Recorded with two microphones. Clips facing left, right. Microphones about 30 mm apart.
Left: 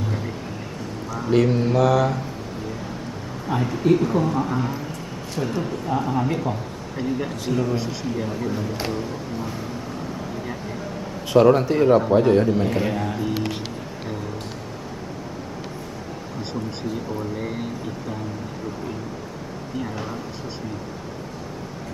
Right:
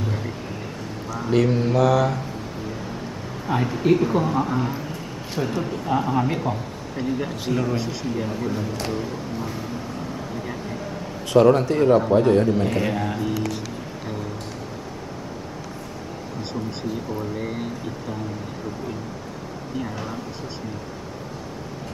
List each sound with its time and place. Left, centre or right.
0.0 s music: centre
1.1 s a man's voice: centre
3.4 s a man's voice: centre
10.3 s vehicle: centre
11.3 s a man's voice: centre
16.9 s a man's voice: centre
19.8 s a man's voice: centre